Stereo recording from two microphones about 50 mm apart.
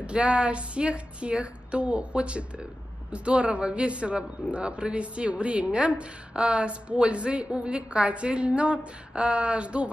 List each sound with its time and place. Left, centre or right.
0.0 s a man's voice: right